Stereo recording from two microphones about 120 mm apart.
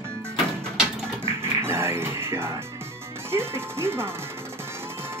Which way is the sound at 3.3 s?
20° right (ahead or behind).